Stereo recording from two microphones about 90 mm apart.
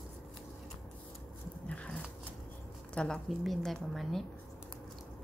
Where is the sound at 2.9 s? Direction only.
10° left (ahead or behind).